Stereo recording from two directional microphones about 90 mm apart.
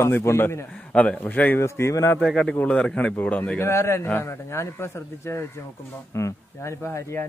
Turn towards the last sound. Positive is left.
turn(degrees=30)  # may be behind; listen again after turning